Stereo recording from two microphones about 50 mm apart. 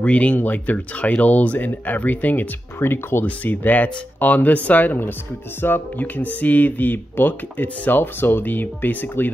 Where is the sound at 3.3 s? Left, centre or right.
Left.